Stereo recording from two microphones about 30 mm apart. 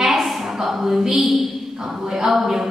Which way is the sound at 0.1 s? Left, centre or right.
Centre.